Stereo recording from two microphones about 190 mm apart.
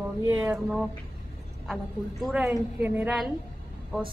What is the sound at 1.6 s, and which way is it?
A woman's voice, centre (ahead or behind).